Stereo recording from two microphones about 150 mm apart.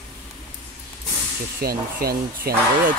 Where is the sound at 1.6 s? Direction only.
90° right.